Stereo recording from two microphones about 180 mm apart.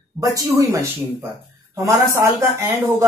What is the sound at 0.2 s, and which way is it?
Speech, 20° right (ahead or behind).